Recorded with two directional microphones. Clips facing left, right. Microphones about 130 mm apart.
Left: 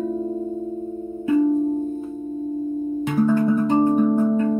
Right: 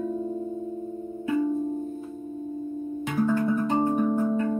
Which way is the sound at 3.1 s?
20° left (ahead or behind).